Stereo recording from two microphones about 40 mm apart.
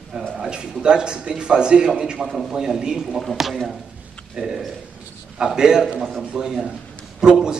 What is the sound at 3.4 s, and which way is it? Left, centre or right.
A man's voice, centre.